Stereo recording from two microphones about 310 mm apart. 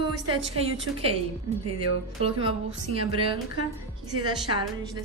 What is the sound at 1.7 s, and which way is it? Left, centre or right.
A woman's voice, centre.